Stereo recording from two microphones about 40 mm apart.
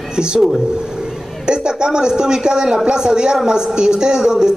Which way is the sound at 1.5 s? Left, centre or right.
Right.